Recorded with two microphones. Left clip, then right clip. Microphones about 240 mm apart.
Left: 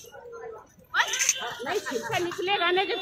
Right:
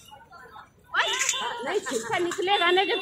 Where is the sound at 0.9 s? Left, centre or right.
Centre.